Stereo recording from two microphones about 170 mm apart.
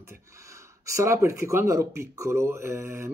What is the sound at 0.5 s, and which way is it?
Speech, 15° right (ahead or behind).